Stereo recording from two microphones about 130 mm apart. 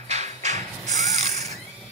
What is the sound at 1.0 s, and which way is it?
Mechanisms, 65° right (ahead or behind).